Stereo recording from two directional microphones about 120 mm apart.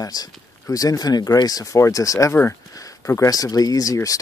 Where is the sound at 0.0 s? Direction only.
30° left (ahead or behind).